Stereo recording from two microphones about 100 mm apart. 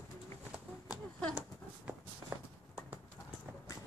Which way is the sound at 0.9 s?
10° right (ahead or behind).